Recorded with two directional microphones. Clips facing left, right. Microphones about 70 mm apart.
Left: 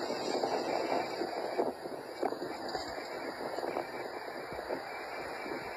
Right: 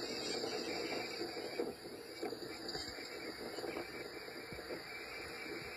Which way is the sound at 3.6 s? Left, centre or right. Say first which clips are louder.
Left 7 dB; left.